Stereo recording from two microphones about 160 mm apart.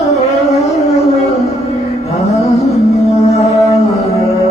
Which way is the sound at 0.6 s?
45° left (ahead or behind).